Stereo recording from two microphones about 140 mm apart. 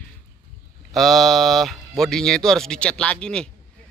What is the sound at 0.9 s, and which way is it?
Speech, centre (ahead or behind).